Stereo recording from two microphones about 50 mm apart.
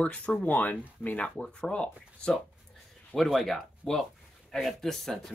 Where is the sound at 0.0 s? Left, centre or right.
Left.